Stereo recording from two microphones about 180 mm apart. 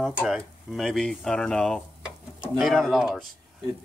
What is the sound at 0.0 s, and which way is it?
Speech, centre (ahead or behind).